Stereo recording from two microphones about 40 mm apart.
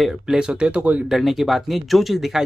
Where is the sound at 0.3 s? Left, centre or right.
Right.